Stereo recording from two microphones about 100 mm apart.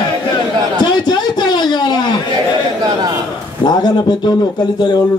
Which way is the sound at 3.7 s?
45° left (ahead or behind).